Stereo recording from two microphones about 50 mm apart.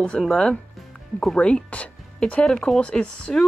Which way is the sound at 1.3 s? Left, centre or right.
Left.